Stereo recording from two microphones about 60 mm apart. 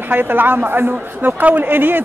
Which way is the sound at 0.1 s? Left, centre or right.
Right.